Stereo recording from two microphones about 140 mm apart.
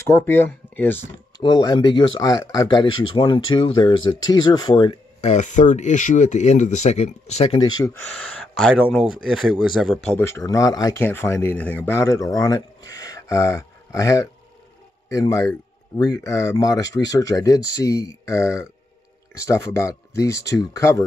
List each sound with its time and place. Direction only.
0.1 s speech: 15° left (ahead or behind)
1.4 s speech: 30° left (ahead or behind)
5.2 s speech: 55° left (ahead or behind)
8.9 s speech: 5° right (ahead or behind)
10.0 s speech: 15° left (ahead or behind)
11.0 s speech: 15° left (ahead or behind)